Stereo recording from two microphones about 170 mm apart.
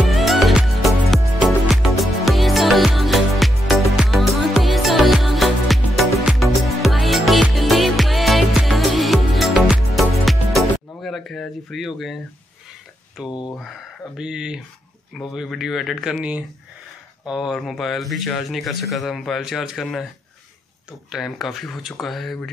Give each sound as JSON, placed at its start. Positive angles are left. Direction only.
{"t": 0.1, "sound": "music", "side_deg": 0}
{"t": 13.3, "sound": "speech", "side_deg": 25}
{"t": 14.1, "sound": "speech", "side_deg": -5}
{"t": 21.1, "sound": "speech", "side_deg": 0}